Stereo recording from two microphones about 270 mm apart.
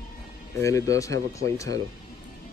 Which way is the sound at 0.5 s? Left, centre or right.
Centre.